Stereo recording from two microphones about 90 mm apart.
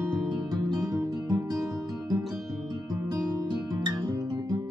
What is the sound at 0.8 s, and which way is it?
Music, 40° right (ahead or behind).